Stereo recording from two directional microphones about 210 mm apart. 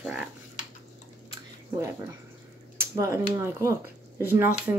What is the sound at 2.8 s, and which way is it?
Speech, 15° right (ahead or behind).